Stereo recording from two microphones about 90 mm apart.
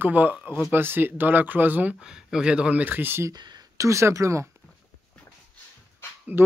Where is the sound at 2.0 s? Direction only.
10° right (ahead or behind); by 3.3 s 25° right (ahead or behind).